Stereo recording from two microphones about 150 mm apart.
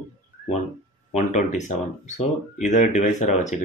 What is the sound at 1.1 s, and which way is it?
Speech, 50° left (ahead or behind).